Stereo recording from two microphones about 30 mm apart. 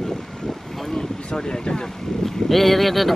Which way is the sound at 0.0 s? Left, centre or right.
Centre.